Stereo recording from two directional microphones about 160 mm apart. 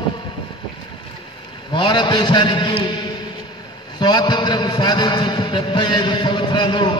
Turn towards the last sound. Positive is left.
turn(degrees=30)  # may be behind; listen again after turning